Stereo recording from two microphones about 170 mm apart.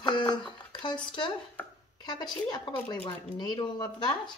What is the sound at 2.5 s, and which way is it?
Speech, 25° left (ahead or behind).